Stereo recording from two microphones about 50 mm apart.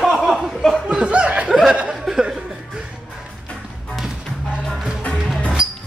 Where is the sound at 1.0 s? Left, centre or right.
Right.